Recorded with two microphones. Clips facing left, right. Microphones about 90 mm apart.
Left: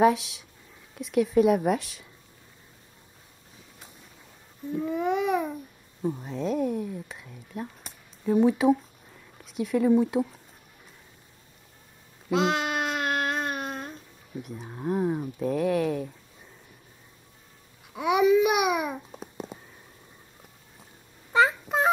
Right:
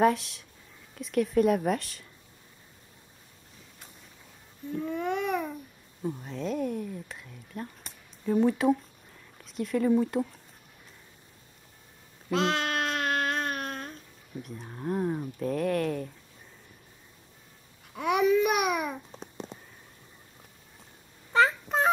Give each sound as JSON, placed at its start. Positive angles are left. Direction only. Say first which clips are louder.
{"t": 0.0, "sound": "speech", "louder": "left 3 dB", "side_deg": 0}
{"t": 4.7, "sound": "speech", "louder": "left 4 dB", "side_deg": 5}
{"t": 12.3, "sound": "speech", "louder": "left 2 dB", "side_deg": 5}
{"t": 17.9, "sound": "babbling", "louder": "left 3 dB", "side_deg": 5}
{"t": 21.3, "sound": "a sound", "louder": "left 1 dB", "side_deg": 5}